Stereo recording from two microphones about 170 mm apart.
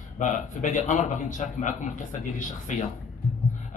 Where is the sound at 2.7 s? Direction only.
45° left (ahead or behind).